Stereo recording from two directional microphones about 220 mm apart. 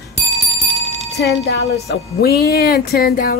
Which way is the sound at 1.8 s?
45° left (ahead or behind).